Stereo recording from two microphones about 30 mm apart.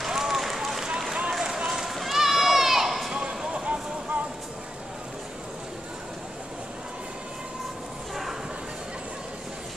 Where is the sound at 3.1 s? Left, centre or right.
Right.